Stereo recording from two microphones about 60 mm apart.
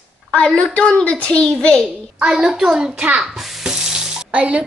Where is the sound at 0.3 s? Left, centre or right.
Left.